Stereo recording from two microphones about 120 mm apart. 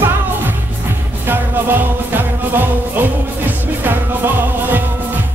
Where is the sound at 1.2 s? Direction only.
15° right (ahead or behind).